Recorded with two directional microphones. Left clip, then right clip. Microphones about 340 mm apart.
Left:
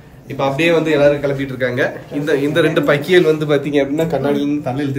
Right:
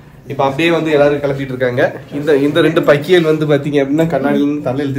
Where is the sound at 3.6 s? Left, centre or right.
Right.